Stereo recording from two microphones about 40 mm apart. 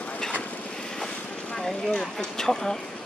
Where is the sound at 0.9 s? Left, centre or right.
Centre.